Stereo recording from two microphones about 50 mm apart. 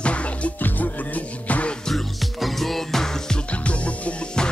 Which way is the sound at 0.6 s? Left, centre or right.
Left.